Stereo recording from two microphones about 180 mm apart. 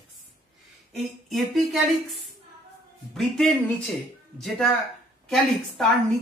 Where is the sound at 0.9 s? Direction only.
Centre (ahead or behind).